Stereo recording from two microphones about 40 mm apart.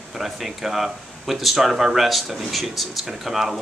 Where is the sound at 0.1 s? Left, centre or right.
Centre.